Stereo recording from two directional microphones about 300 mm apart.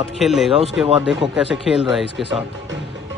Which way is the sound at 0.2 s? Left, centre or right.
Centre.